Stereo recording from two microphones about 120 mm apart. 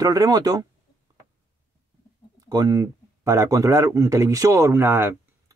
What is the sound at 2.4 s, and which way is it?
Speech, 30° right (ahead or behind).